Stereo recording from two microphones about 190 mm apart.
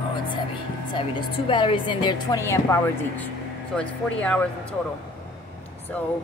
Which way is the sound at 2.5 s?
15° left (ahead or behind).